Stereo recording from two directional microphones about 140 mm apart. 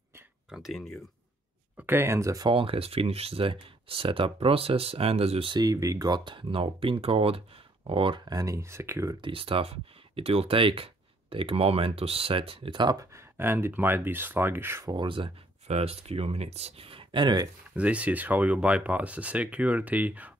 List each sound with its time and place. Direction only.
0.5 s speech: centre (ahead or behind)
1.8 s speech: 15° right (ahead or behind)
2.5 s speech: 40° right (ahead or behind); by 9.1 s 20° right (ahead or behind)
9.2 s speech: 40° right (ahead or behind); by 15.0 s 20° right (ahead or behind)
15.0 s speech: 35° right (ahead or behind)
17.7 s speech: 10° right (ahead or behind)